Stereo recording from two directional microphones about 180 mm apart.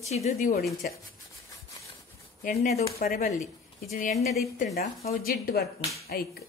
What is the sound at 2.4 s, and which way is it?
Speech, 40° left (ahead or behind).